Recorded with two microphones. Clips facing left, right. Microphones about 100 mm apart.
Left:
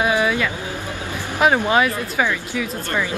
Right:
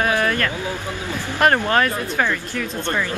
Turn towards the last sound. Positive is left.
turn(degrees=10)  # may be behind; listen again after turning